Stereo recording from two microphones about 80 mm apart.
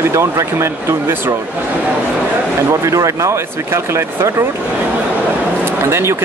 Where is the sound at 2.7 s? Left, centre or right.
Right.